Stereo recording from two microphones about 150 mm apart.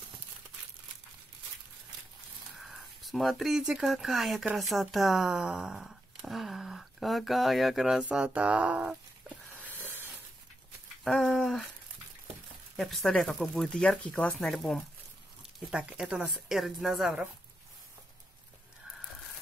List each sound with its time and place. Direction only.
2.5 s speech: centre (ahead or behind)
11.1 s speech: 5° left (ahead or behind)
12.7 s speech: centre (ahead or behind)
15.4 s speech: 10° right (ahead or behind)